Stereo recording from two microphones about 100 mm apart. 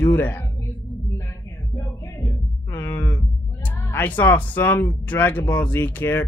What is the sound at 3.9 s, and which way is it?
Speech, 20° left (ahead or behind).